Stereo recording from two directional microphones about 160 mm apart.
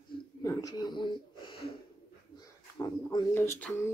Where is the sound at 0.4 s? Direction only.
20° left (ahead or behind).